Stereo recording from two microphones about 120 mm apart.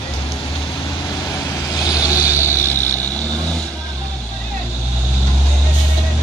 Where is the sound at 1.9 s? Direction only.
30° left (ahead or behind).